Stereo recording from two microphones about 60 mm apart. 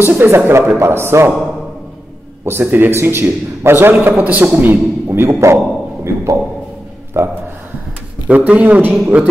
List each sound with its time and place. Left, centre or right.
0.0 s a man's voice: right
2.4 s a man's voice: right
4.5 s a man's voice: right
6.0 s a man's voice: right
8.3 s speech: right